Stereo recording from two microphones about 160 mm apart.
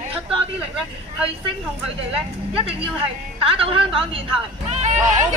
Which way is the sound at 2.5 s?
35° right (ahead or behind).